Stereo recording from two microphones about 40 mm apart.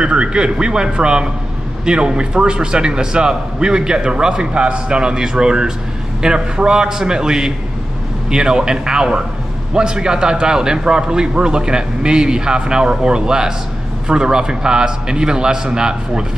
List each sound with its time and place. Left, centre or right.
0.0 s a man's voice: right